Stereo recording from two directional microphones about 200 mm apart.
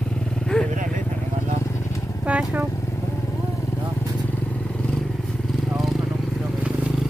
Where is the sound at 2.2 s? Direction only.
5° right (ahead or behind).